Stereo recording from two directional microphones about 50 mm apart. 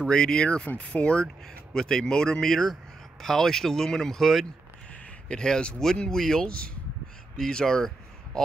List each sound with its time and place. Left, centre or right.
0.0 s speech: centre
5.3 s speech: centre